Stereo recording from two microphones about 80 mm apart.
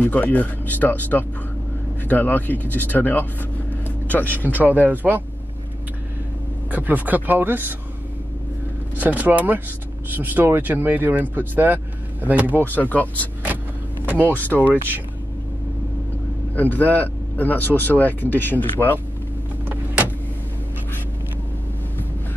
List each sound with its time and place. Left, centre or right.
0.0 s speech: centre
3.8 s vehicle: left
4.8 s speech: right
6.7 s speech: right
8.9 s speech: right
12.5 s speech: left
14.0 s speech: right
14.3 s speech: left
16.5 s speech: left